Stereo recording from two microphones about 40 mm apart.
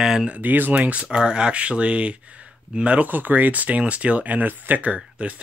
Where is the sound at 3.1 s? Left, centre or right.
Right.